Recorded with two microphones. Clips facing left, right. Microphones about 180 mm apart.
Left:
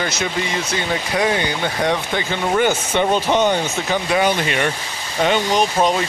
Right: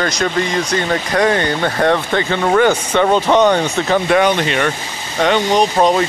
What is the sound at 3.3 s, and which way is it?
Speech, 70° right (ahead or behind).